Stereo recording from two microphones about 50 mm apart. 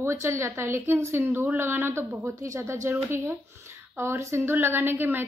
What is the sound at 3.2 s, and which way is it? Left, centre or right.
Speech, right.